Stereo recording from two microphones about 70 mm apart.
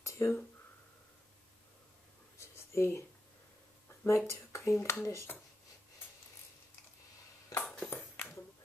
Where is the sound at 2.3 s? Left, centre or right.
Left.